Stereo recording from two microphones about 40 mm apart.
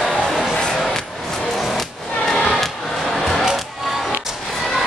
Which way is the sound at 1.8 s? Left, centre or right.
Centre.